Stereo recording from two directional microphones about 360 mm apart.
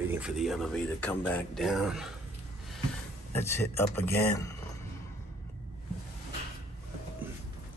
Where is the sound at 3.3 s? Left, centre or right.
Centre.